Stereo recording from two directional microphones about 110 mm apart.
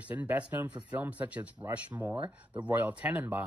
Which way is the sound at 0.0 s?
15° right (ahead or behind).